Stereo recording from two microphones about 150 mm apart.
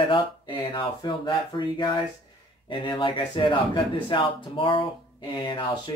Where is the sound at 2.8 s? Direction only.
30° left (ahead or behind).